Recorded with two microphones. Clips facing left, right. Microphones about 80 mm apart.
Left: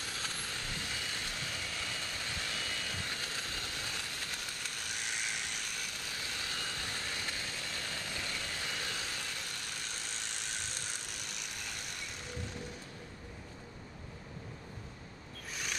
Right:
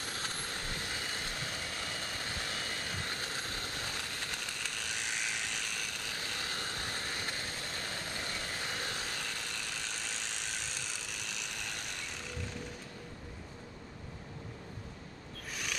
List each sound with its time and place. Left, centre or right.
0.0 s vehicle: right
6.1 s vehicle: right